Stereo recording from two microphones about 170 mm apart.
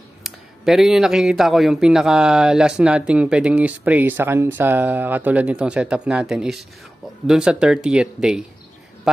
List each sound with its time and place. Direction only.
0.2 s a woman's voice: centre (ahead or behind)